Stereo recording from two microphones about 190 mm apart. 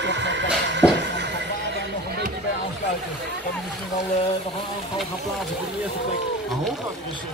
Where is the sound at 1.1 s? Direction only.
65° right (ahead or behind).